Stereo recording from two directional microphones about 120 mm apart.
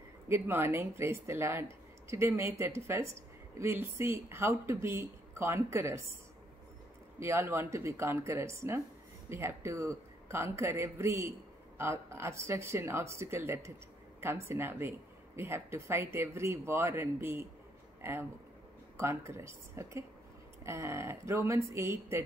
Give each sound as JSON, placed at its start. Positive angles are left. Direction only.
{"t": 0.3, "sound": "speech", "side_deg": -20}
{"t": 7.2, "sound": "speech", "side_deg": -20}